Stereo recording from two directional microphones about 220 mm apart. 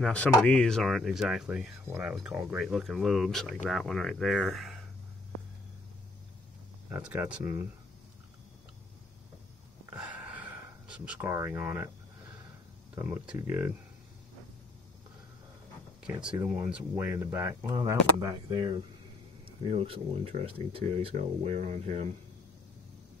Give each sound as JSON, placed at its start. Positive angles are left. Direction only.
{"t": 0.0, "sound": "speech", "side_deg": 5}
{"t": 6.9, "sound": "speech", "side_deg": -5}
{"t": 9.9, "sound": "gasp", "side_deg": -5}
{"t": 10.9, "sound": "speech", "side_deg": -5}
{"t": 13.0, "sound": "speech", "side_deg": -10}
{"t": 16.0, "sound": "speech", "side_deg": -5}